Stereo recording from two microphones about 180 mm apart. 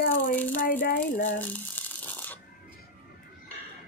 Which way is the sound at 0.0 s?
50° left (ahead or behind).